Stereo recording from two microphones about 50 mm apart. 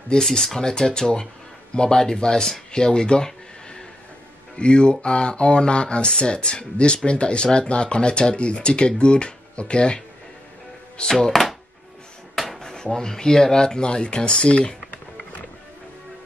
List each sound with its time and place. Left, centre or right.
0.2 s speech: centre
2.7 s a sound: centre
4.6 s speech: left